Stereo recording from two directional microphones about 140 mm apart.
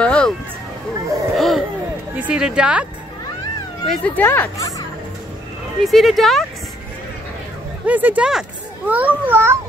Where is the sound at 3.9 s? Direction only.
10° left (ahead or behind).